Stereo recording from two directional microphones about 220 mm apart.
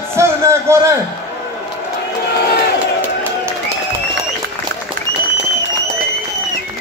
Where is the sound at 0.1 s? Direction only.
10° right (ahead or behind).